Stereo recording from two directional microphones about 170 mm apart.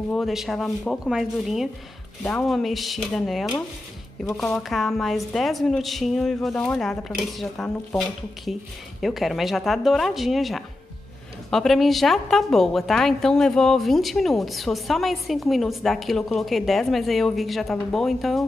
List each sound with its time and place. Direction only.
0.1 s a woman's voice: centre (ahead or behind)
9.0 s a woman's voice: centre (ahead or behind)